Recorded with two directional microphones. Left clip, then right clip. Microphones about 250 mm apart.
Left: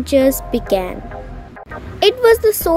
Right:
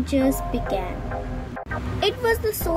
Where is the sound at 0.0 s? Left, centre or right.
Left.